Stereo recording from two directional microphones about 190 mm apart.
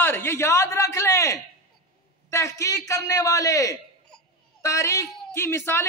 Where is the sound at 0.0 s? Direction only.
10° left (ahead or behind).